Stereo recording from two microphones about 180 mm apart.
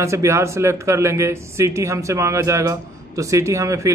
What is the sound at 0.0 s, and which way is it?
A man's voice, 15° right (ahead or behind).